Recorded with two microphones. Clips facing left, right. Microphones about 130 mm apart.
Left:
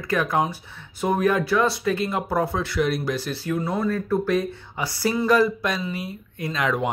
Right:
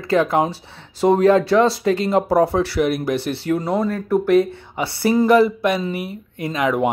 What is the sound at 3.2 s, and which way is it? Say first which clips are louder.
Speech: right 5 dB; 65° right (ahead or behind).